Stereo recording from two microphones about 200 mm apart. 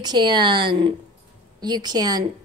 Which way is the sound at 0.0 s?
20° right (ahead or behind).